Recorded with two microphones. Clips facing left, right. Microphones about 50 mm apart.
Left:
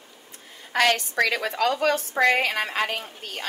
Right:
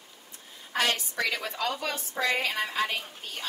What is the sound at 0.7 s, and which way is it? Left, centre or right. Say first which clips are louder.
A woman's voice: left 7 dB; left.